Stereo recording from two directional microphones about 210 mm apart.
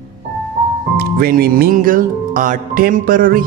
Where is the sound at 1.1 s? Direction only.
45° right (ahead or behind).